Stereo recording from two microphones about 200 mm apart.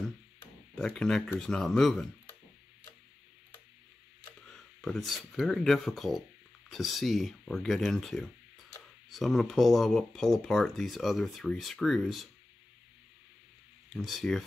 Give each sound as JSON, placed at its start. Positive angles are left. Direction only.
{"t": 0.7, "sound": "speech", "side_deg": 5}
{"t": 4.5, "sound": "speech", "side_deg": 0}
{"t": 13.9, "sound": "speech", "side_deg": 0}